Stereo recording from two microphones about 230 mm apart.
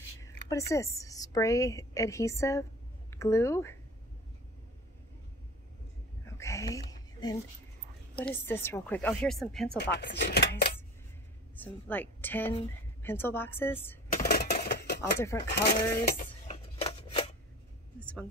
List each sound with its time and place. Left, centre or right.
0.2 s a woman's voice: centre
6.2 s whispering: centre
8.2 s speech: centre
9.8 s speech: left
11.5 s a woman's voice: centre
14.1 s a sound: left
15.0 s speech: centre
16.0 s a sound: left
16.6 s scissors: left